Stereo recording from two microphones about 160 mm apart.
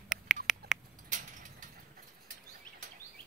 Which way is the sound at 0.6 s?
75° right (ahead or behind).